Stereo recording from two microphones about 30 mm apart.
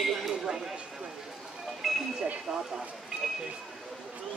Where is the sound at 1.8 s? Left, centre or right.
Centre.